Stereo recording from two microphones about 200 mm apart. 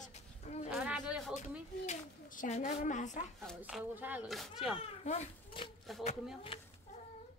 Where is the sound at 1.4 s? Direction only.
40° left (ahead or behind).